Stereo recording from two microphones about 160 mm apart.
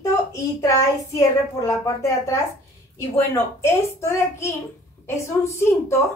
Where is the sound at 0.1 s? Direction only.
20° left (ahead or behind).